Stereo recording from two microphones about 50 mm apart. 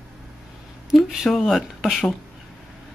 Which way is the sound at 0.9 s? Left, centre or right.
Centre.